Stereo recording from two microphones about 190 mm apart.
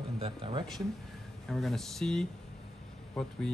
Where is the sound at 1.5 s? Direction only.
Centre (ahead or behind).